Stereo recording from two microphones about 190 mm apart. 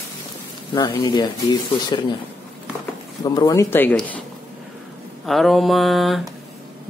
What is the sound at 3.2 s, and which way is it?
Speech, 20° left (ahead or behind).